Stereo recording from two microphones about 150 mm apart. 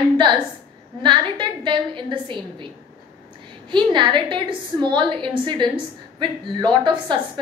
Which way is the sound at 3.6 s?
30° right (ahead or behind).